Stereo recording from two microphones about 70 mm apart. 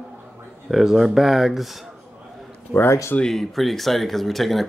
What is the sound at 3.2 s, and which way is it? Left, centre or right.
Speech, centre.